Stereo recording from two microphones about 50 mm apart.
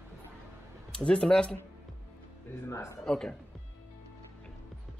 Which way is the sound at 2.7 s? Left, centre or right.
Left.